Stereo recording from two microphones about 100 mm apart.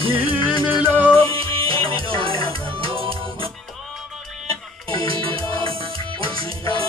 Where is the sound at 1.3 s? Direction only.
65° right (ahead or behind).